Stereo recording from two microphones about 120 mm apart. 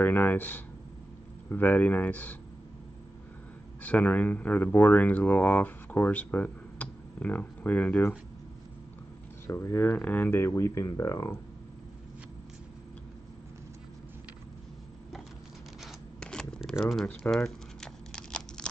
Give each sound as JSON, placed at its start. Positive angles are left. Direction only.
{"t": 0.0, "sound": "a sound", "side_deg": 15}
{"t": 1.5, "sound": "speech", "side_deg": 15}
{"t": 3.8, "sound": "speech", "side_deg": 15}
{"t": 9.5, "sound": "speech", "side_deg": 20}
{"t": 15.8, "sound": "a sound", "side_deg": 5}
{"t": 16.8, "sound": "speech", "side_deg": 5}
{"t": 17.3, "sound": "crumpling", "side_deg": 5}